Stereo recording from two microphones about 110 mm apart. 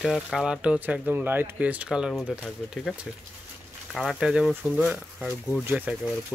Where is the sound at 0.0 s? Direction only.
5° right (ahead or behind).